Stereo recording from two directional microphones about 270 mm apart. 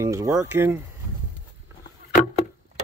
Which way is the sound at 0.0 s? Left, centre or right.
Centre.